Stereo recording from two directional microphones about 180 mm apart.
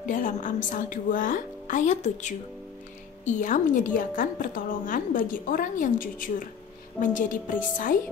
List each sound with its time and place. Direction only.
0.0 s a woman's voice: 45° left (ahead or behind)